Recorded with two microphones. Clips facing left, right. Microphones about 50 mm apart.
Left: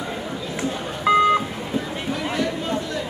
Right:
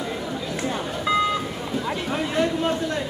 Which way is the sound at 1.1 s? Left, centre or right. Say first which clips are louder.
Left 5 dB; left.